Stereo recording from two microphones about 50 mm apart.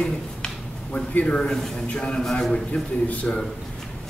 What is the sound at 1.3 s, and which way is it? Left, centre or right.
A man's voice, centre.